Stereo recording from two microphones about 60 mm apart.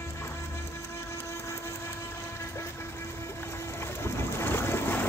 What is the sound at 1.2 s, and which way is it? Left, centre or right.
Vehicle, left.